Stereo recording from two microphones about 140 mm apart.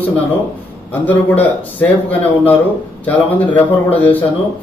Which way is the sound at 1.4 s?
10° left (ahead or behind).